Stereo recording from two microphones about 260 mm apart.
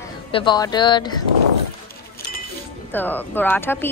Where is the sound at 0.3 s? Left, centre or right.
Centre.